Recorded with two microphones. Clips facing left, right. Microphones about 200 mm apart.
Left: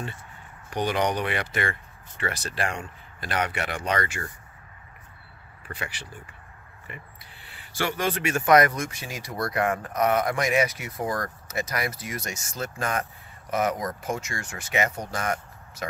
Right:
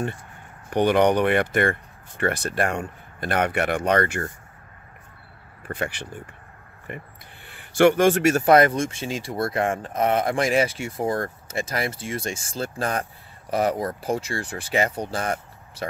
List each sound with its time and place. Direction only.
0.7 s speech: 55° right (ahead or behind)
5.7 s speech: 55° right (ahead or behind); by 15.9 s 30° right (ahead or behind)